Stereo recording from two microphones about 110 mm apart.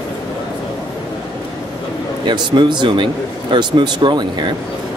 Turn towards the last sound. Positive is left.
turn(degrees=-45)  # may be behind; listen again after turning